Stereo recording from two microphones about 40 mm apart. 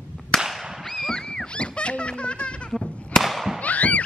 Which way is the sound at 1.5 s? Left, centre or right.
Left.